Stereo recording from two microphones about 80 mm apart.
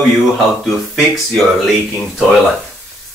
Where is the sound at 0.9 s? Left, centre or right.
Centre.